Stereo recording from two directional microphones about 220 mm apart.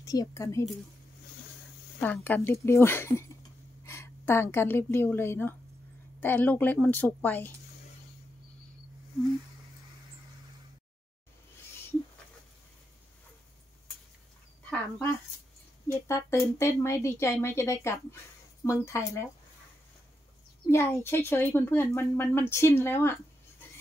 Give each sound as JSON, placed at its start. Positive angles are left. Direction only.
{"t": 0.0, "sound": "speech", "side_deg": 15}
{"t": 2.0, "sound": "a woman's voice", "side_deg": 10}
{"t": 14.7, "sound": "speech", "side_deg": 10}
{"t": 20.7, "sound": "speech", "side_deg": 10}